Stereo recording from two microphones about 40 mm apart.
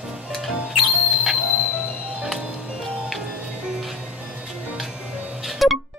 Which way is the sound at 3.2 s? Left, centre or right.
Right.